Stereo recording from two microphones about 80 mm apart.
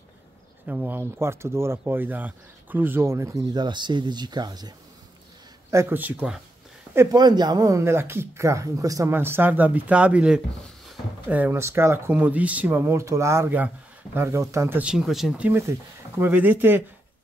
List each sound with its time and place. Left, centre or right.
0.7 s speech: right
3.3 s speech: right
3.6 s speech: right
5.9 s speech: right
7.1 s speech: right
7.8 s speech: right
9.1 s speech: right
11.5 s speech: right
12.2 s speech: centre
12.9 s speech: right
15.0 s speech: centre
15.7 s speech: right
16.3 s speech: right